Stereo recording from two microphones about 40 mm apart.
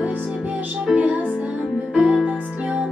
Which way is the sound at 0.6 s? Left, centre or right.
Right.